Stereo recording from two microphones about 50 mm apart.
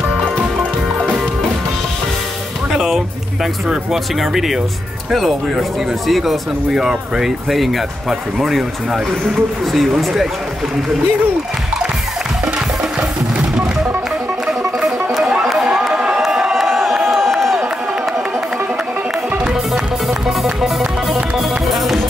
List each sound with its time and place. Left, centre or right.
0.4 s music: right
2.7 s music: centre
3.6 s speech: centre
14.8 s music: centre
15.2 s run: centre
15.9 s crowd: centre
16.3 s a sound: centre
16.5 s a sound: centre
19.5 s music: centre